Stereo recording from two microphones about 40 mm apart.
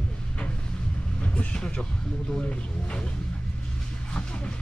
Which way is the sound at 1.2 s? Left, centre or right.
Left.